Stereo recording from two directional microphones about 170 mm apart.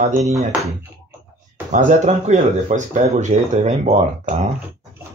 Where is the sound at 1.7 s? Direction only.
50° right (ahead or behind).